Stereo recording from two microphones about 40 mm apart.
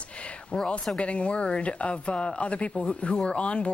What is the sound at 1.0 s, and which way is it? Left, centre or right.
Speech, left.